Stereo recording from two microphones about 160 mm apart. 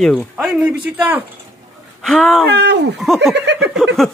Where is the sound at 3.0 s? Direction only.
Centre (ahead or behind).